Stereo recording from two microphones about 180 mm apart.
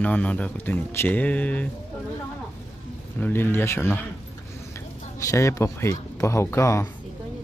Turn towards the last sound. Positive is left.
turn(degrees=15)  # may be behind; listen again after turning